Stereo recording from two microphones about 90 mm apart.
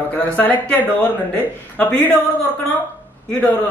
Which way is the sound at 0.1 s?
20° left (ahead or behind).